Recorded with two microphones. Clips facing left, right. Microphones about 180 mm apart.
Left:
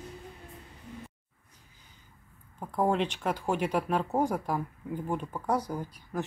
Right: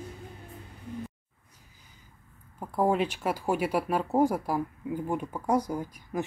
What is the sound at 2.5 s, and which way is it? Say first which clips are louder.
Speech: right 2 dB; 5° right (ahead or behind).